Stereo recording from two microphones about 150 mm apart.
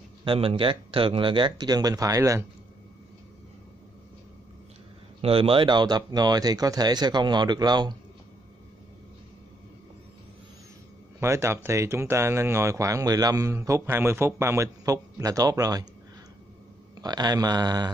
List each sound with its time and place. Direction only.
0.2 s speech: 35° right (ahead or behind)
5.2 s speech: 35° right (ahead or behind)
11.1 s speech: 20° right (ahead or behind)
17.0 s speech: 25° right (ahead or behind)